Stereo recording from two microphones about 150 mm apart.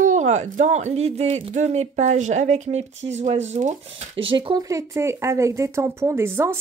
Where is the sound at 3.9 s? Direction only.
35° right (ahead or behind).